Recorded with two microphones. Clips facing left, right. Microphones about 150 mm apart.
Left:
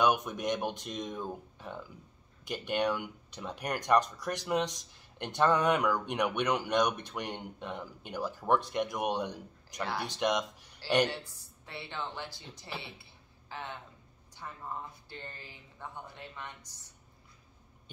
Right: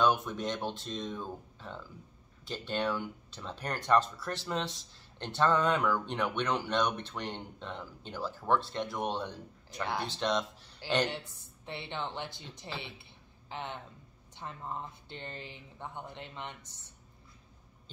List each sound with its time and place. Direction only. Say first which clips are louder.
0.0 s speech: even; 15° left (ahead or behind)
11.1 s speech: even; 20° right (ahead or behind)